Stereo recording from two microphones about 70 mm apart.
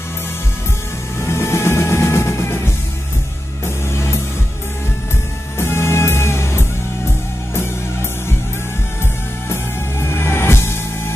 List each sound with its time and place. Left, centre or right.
1.2 s music: left
5.6 s music: left
9.5 s music: left